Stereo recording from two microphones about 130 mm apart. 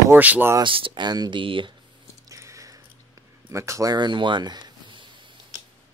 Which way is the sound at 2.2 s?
25° right (ahead or behind).